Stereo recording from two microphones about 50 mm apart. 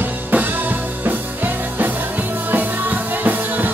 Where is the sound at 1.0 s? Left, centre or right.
Right.